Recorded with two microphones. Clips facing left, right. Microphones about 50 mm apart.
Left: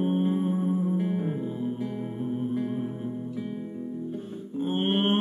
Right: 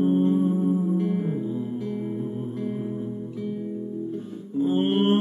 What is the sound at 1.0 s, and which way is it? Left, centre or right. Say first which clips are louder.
Music: right 3 dB; centre.